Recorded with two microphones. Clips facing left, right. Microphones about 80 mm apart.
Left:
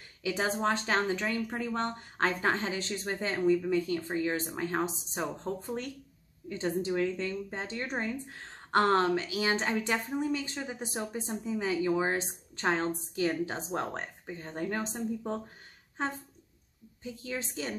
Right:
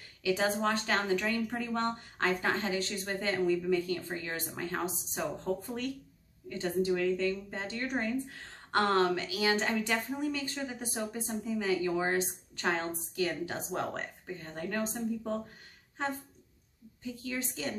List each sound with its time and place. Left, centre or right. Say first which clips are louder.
0.2 s speech: right 1 dB; left
17.0 s speech: even; left